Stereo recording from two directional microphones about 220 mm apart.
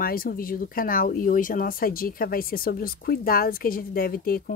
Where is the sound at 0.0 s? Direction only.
40° left (ahead or behind).